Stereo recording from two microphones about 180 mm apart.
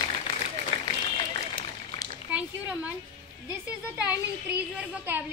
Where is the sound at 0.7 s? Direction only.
30° left (ahead or behind).